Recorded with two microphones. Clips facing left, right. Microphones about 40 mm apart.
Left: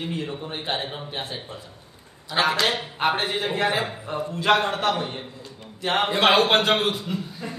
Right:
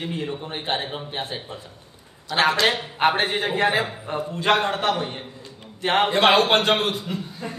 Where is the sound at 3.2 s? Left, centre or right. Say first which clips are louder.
Right 2 dB; centre.